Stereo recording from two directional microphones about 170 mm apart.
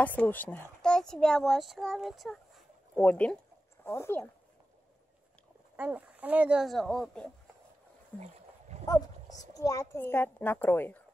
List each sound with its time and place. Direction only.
0.0 s a child's voice: 10° left (ahead or behind)
5.8 s a child's voice: 10° right (ahead or behind)
8.2 s boat: 40° right (ahead or behind)
8.8 s a child's voice: 20° left (ahead or behind)